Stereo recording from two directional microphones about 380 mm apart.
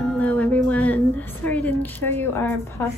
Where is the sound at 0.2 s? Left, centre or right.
Centre.